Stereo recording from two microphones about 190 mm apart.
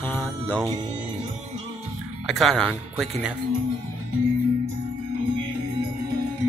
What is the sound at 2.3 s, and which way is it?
Speech, centre (ahead or behind).